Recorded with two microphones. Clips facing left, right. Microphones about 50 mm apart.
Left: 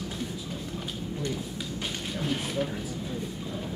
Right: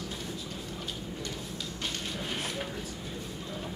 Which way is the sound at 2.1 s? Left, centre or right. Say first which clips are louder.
Left 5 dB; centre.